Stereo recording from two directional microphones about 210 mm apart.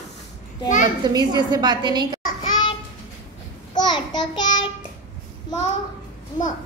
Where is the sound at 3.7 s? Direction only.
20° left (ahead or behind).